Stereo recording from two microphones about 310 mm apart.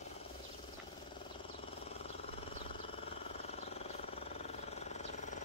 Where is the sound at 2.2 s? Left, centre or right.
Centre.